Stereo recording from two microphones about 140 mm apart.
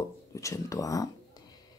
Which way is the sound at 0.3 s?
20° left (ahead or behind).